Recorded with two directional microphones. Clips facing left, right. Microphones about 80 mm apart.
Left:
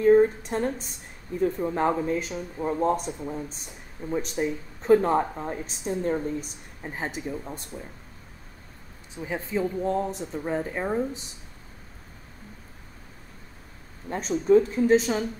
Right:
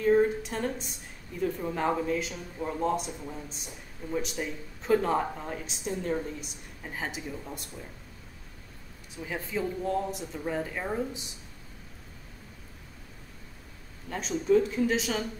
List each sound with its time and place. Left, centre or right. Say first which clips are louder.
0.0 s a sound: left 5 dB; left
1.4 s speech: left 5 dB; left
2.1 s a woman's voice: left 3 dB; left
2.6 s a woman's voice: left 4 dB; left
9.1 s speech: left 4 dB; left
14.0 s a woman's voice: left 4 dB; left